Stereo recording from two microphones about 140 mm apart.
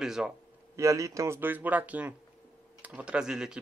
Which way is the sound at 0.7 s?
20° right (ahead or behind).